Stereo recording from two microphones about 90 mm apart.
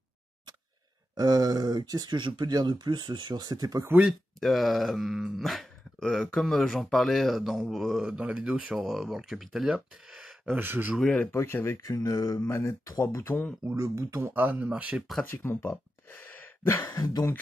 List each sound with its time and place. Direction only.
1.1 s speech: 45° right (ahead or behind)
4.4 s speech: centre (ahead or behind)
10.5 s speech: 25° right (ahead or behind)
11.0 s speech: 10° left (ahead or behind)
11.3 s speech: 30° left (ahead or behind)
12.4 s speech: 25° left (ahead or behind)
13.7 s speech: 35° right (ahead or behind)
14.3 s speech: 20° right (ahead or behind)
15.2 s a sound: 25° left (ahead or behind)
16.9 s speech: 45° left (ahead or behind)